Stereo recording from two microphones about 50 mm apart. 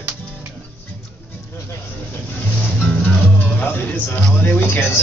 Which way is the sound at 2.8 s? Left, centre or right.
Left.